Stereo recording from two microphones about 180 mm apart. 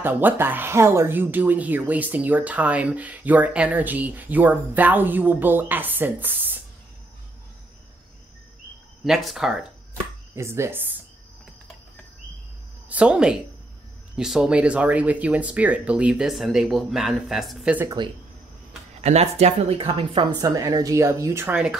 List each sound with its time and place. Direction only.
0.0 s speech: 10° right (ahead or behind)
9.0 s speech: centre (ahead or behind)
10.3 s speech: 15° right (ahead or behind)
12.8 s speech: 5° right (ahead or behind)
17.8 s speech: 25° right (ahead or behind)
18.9 s speech: 35° right (ahead or behind); by 21.7 s 10° right (ahead or behind)